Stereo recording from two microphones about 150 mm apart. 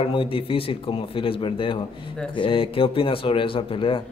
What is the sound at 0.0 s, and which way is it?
Speech, 35° left (ahead or behind).